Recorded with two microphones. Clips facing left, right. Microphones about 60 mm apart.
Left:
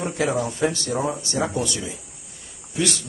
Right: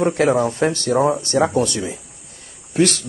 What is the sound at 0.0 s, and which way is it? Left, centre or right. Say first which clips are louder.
Speech: right 7 dB; right.